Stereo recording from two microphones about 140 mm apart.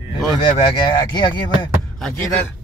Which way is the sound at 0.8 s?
35° left (ahead or behind).